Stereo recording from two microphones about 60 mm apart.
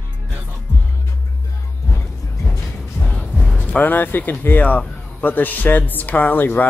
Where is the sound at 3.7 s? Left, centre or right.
Left.